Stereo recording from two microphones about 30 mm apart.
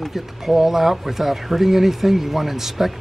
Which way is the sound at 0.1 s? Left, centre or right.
Centre.